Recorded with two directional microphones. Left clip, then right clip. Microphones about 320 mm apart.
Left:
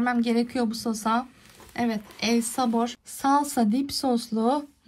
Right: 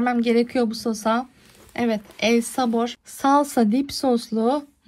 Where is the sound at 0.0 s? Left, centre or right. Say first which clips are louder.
Right 5 dB; centre.